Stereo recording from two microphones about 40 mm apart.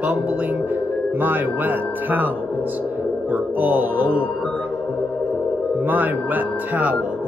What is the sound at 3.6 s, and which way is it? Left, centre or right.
Speech, right.